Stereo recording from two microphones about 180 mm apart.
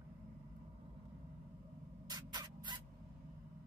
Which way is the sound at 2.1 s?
25° right (ahead or behind).